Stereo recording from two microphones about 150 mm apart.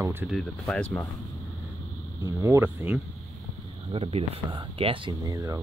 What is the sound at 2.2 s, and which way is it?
Speech, 20° right (ahead or behind).